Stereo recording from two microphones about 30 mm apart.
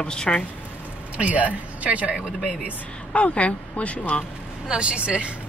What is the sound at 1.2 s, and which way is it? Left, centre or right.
Speech, right.